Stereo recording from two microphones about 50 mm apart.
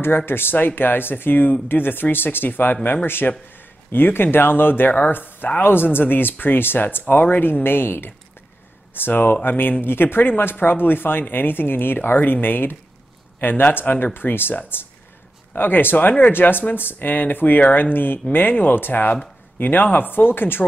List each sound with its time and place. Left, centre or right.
0.0 s speech: left